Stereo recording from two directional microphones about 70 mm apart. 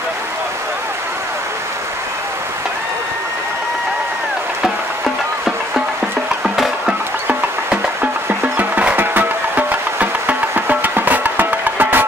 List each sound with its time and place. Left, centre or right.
6.4 s music: centre
7.2 s music: centre